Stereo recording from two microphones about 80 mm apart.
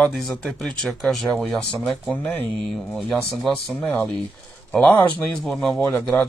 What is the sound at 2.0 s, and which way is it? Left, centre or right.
Speech, left.